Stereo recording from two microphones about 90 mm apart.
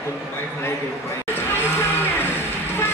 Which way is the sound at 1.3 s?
25° left (ahead or behind).